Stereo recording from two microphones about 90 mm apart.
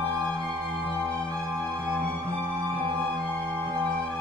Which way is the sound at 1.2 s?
10° left (ahead or behind).